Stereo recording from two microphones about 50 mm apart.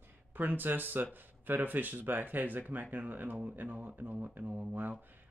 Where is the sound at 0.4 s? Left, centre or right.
Right.